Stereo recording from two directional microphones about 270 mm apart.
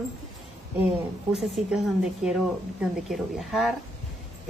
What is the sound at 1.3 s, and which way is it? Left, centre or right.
A woman's voice, centre.